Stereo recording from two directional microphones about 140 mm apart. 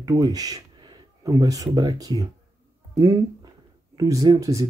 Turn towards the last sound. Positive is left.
turn(degrees=-25)  # may be behind; listen again after turning